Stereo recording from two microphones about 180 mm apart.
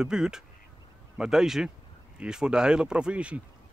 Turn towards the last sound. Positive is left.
turn(degrees=-5)  # may be behind; listen again after turning